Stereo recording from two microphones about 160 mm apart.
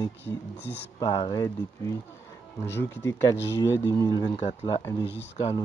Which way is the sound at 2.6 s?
15° left (ahead or behind).